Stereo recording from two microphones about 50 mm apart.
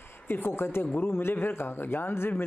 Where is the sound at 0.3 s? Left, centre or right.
Left.